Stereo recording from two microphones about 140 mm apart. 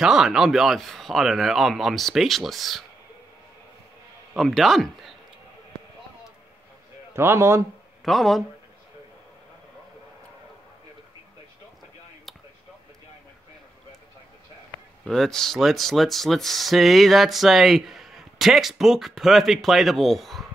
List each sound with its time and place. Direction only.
0.0 s speech: 5° right (ahead or behind)
4.3 s speech: centre (ahead or behind)
7.2 s a man's voice: 20° right (ahead or behind)
8.0 s speech: centre (ahead or behind)
15.0 s speech: 5° left (ahead or behind)